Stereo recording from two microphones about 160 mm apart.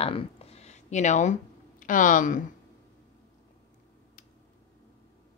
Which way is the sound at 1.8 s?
55° left (ahead or behind).